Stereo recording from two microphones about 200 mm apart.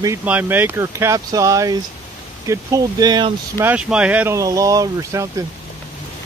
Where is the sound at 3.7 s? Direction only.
5° right (ahead or behind).